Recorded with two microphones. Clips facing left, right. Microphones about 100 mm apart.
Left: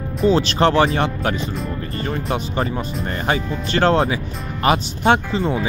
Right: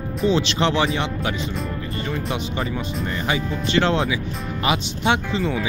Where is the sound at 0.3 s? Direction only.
40° left (ahead or behind).